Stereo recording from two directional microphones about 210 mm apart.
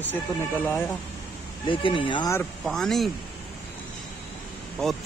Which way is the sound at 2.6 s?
Centre (ahead or behind).